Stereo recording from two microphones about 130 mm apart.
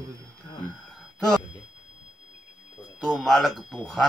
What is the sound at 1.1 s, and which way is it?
Speech, centre (ahead or behind).